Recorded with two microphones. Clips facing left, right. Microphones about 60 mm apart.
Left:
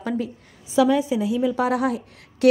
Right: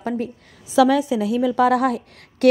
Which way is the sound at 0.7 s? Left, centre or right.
Right.